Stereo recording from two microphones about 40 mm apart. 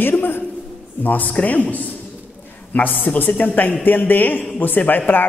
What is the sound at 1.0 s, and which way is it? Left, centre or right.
A woman's voice, left.